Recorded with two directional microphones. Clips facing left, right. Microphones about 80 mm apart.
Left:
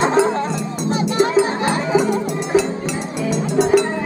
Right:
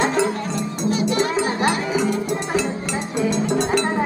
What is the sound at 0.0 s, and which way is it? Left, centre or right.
Cowbell, left.